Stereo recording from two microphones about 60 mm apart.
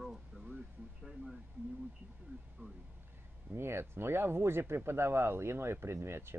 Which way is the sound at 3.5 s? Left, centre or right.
Right.